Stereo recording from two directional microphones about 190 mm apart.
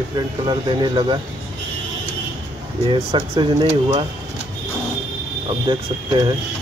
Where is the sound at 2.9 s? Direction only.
25° right (ahead or behind).